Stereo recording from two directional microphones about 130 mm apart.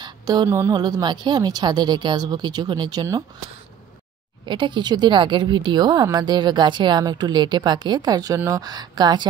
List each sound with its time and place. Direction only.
0.0 s a sound: 30° right (ahead or behind)
0.5 s speech: 20° right (ahead or behind)
0.7 s speech: 30° right (ahead or behind)
4.5 s speech: 35° right (ahead or behind)